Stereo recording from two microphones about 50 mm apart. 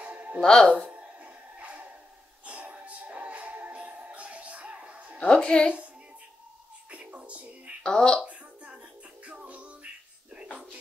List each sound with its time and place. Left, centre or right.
0.0 s music: right
0.4 s speech: centre
0.8 s a sound: right
2.4 s music: right
5.2 s speech: centre
6.9 s music: right
7.8 s speech: centre
9.2 s music: right
10.3 s a sound: right